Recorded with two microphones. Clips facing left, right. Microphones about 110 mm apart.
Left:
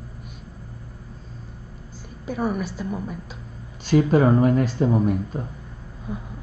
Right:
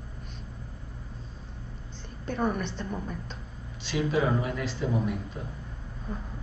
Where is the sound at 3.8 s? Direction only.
45° left (ahead or behind).